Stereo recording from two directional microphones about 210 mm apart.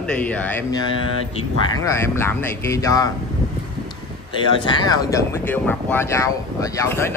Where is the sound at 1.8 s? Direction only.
15° left (ahead or behind).